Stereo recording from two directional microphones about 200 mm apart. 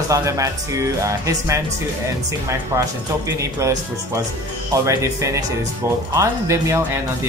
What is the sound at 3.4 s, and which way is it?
Speech, 15° right (ahead or behind).